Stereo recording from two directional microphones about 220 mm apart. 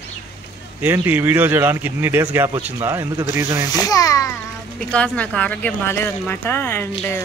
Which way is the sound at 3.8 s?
15° left (ahead or behind).